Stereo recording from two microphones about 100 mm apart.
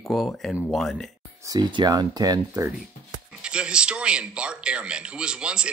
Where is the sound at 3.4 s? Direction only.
10° right (ahead or behind).